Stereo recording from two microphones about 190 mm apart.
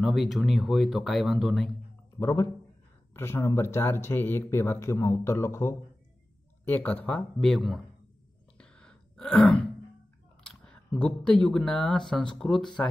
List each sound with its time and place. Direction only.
0.0 s speech: centre (ahead or behind)
2.1 s speech: 15° left (ahead or behind)
8.5 s throat clearing: 5° left (ahead or behind)
10.4 s speech: 5° left (ahead or behind)